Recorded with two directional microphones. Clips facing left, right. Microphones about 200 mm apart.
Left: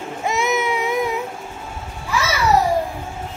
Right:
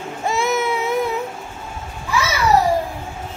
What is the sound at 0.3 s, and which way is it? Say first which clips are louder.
Baby cry: right 1 dB; 20° left (ahead or behind).